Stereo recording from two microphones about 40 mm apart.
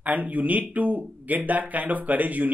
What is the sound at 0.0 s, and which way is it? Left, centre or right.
Speech, right.